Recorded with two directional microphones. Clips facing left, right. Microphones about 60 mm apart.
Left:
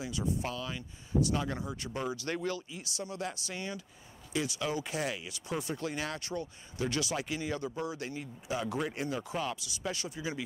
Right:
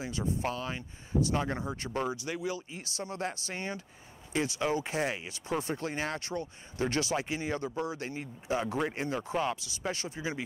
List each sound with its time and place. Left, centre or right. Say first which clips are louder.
0.0 s speech: right 2 dB; right
2.2 s speech: even; centre
2.7 s speech: right 1 dB; right